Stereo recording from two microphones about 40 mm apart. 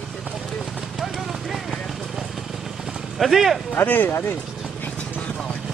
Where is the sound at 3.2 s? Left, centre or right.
Centre.